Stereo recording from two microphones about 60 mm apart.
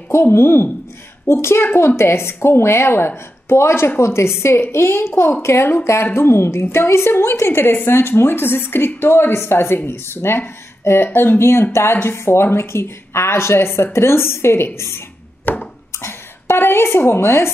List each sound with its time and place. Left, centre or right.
0.1 s a woman's voice: left
15.4 s a sound: left
16.0 s speech: left